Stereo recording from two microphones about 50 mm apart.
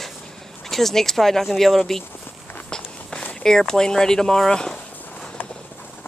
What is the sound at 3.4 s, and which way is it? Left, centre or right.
Speech, centre.